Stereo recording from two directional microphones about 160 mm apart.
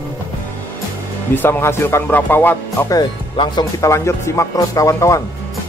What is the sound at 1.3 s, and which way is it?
Speech, 15° left (ahead or behind).